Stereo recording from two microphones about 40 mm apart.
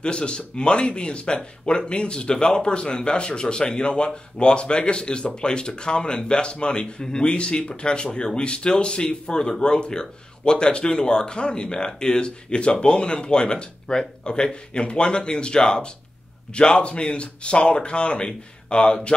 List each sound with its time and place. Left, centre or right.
0.0 s speech: left